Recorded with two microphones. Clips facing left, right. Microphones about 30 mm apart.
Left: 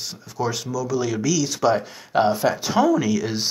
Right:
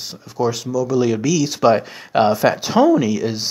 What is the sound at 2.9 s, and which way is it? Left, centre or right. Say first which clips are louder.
Speech: right 3 dB; centre.